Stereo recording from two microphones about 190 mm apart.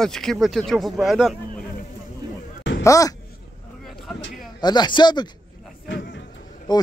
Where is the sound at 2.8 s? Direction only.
15° left (ahead or behind).